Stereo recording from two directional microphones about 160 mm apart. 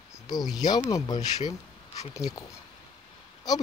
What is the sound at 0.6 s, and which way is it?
Speech, 25° left (ahead or behind).